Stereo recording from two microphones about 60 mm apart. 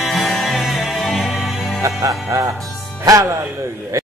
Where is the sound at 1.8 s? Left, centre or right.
Right.